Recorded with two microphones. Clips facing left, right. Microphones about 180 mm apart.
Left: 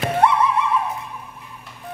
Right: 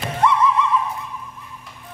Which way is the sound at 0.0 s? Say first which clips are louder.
Left 1 dB; 60° left (ahead or behind).